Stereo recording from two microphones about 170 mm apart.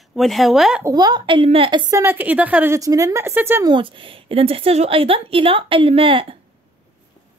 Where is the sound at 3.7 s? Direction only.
30° right (ahead or behind).